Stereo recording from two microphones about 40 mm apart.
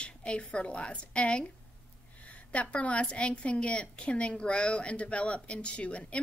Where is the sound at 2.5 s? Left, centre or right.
Left.